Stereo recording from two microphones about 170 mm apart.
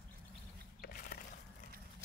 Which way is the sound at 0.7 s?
60° left (ahead or behind).